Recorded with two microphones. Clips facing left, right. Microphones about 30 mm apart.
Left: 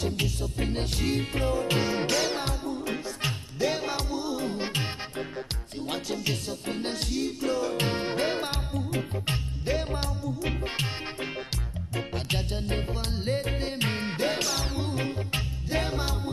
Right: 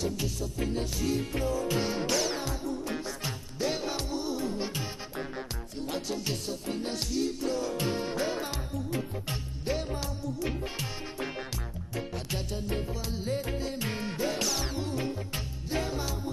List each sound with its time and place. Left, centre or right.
0.0 s music: left
3.5 s music: centre
4.4 s music: left
5.9 s music: centre
6.6 s music: left
7.3 s music: centre
7.7 s music: left
11.9 s music: left